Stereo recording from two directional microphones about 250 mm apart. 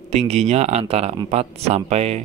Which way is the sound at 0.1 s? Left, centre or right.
Right.